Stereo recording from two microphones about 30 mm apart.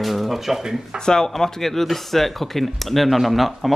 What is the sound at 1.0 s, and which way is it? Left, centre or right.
Speech, left.